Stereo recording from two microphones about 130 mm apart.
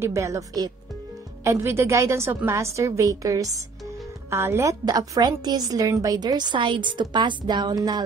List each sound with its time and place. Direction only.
0.0 s a woman's voice: 25° right (ahead or behind)